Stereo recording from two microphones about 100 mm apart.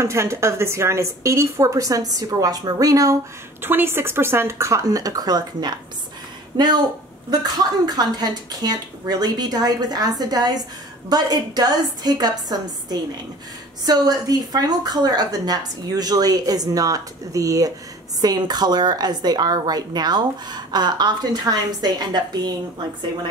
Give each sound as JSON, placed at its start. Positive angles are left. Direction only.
{"t": 0.0, "sound": "speech", "side_deg": -30}
{"t": 3.6, "sound": "a woman's voice", "side_deg": -20}